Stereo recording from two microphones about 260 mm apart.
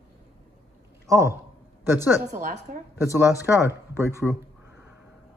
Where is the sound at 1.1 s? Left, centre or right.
Centre.